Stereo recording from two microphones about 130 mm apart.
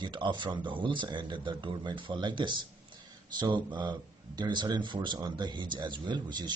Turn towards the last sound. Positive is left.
turn(degrees=-35)  # may be behind; listen again after turning